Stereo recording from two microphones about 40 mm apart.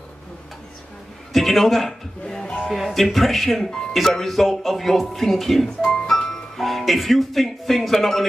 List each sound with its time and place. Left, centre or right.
1.3 s speech: centre
2.2 s music: centre
2.7 s speech: centre
5.9 s music: centre